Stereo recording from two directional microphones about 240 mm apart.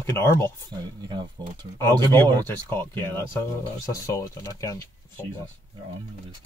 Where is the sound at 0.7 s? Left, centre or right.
Centre.